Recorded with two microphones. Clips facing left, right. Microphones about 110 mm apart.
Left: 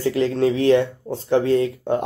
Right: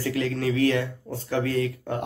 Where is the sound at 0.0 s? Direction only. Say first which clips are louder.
Left 7 dB; 25° left (ahead or behind).